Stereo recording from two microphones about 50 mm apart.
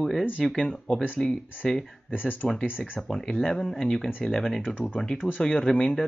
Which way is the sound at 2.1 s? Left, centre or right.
Left.